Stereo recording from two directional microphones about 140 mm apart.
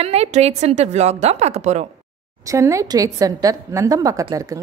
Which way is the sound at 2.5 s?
20° right (ahead or behind).